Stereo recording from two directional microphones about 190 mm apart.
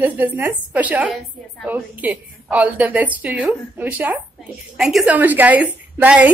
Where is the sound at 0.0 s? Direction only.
10° right (ahead or behind).